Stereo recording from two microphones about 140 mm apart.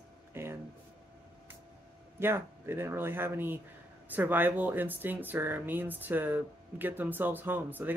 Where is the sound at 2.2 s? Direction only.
15° right (ahead or behind).